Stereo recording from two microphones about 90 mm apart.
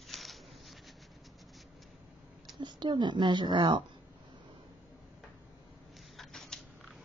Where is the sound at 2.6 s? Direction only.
55° right (ahead or behind).